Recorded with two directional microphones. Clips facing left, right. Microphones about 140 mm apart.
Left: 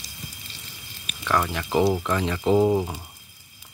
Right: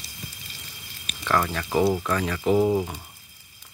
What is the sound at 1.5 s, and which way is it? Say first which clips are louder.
Speech: left 1 dB; 15° left (ahead or behind).